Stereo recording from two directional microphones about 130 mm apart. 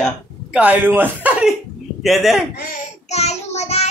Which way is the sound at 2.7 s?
60° left (ahead or behind).